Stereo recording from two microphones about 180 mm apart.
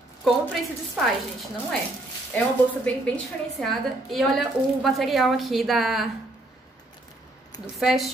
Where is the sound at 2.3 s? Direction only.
10° left (ahead or behind).